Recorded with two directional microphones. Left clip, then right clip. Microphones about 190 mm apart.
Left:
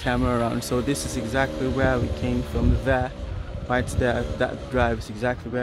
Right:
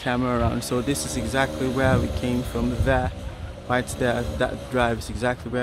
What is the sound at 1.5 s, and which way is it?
Speech, 55° right (ahead or behind).